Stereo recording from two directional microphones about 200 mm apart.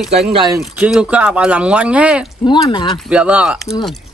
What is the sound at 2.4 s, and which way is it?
Speech, 25° left (ahead or behind).